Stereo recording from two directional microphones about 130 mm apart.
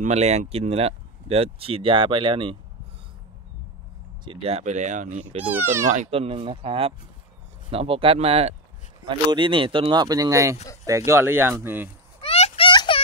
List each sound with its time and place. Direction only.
0.0 s speech: 60° right (ahead or behind); by 2.5 s 40° right (ahead or behind)
4.2 s speech: 45° right (ahead or behind); by 5.2 s 70° right (ahead or behind)
5.5 s speech: 20° right (ahead or behind)
6.0 s speech: 50° right (ahead or behind)
9.0 s speech: 40° right (ahead or behind); by 11.9 s 15° right (ahead or behind)
12.2 s a sound: 50° left (ahead or behind)
12.6 s a sound: 40° left (ahead or behind)